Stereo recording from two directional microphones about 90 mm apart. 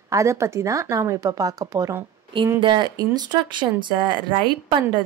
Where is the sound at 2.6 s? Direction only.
55° right (ahead or behind).